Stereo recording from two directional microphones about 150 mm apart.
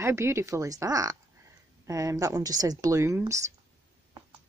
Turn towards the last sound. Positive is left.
turn(degrees=-20)  # may be behind; listen again after turning